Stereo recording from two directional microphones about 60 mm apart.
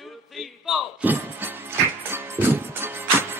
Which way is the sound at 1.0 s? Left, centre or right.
Right.